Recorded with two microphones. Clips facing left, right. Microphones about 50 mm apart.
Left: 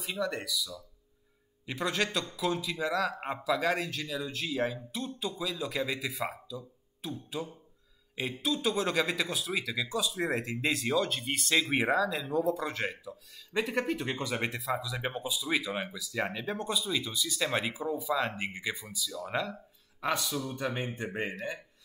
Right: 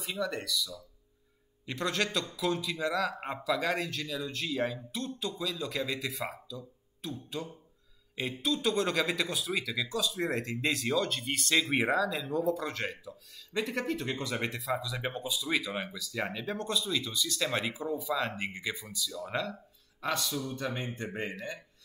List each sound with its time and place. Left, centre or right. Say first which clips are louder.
0.0 s speech: left 1 dB; centre
20.0 s speech: left 1 dB; centre